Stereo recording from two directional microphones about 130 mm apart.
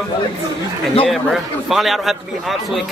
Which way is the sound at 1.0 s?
Centre (ahead or behind).